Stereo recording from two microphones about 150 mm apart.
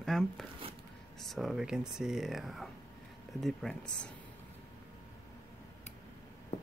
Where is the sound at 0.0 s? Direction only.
Centre (ahead or behind).